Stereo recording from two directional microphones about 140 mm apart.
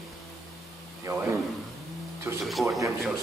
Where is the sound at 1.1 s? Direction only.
25° right (ahead or behind).